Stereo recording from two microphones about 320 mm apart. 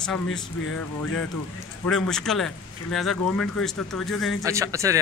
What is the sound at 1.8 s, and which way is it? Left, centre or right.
Speech, centre.